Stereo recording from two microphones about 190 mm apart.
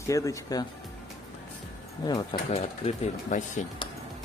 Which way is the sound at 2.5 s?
35° left (ahead or behind).